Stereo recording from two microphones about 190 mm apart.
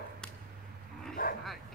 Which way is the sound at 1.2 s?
45° left (ahead or behind).